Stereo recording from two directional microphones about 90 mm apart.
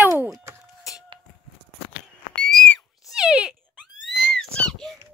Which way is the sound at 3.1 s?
10° right (ahead or behind).